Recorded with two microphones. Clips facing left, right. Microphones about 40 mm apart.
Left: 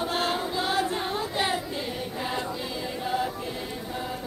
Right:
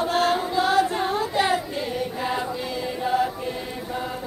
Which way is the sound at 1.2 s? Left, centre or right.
Centre.